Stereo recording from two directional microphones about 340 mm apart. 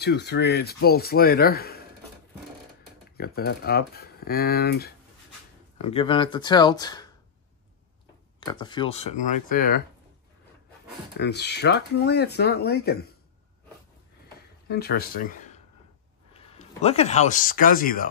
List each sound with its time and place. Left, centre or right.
0.0 s speech: left
3.2 s speech: left
5.8 s speech: centre
8.4 s speech: centre
11.1 s speech: left
14.7 s speech: left